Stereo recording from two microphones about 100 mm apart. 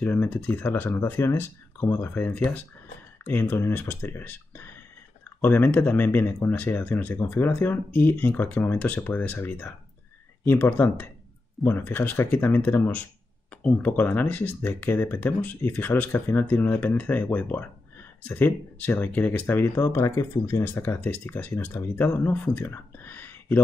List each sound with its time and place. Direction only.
0.0 s speech: 20° left (ahead or behind)